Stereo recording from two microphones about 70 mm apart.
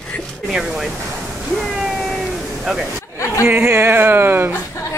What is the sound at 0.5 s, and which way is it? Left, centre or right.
Speech, centre.